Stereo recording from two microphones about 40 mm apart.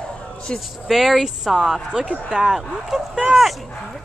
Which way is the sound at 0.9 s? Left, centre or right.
Centre.